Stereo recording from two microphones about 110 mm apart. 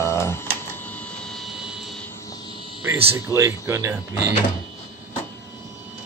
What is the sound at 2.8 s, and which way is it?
Speech, 25° right (ahead or behind).